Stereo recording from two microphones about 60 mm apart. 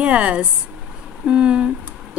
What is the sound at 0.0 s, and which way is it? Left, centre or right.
Speech, right.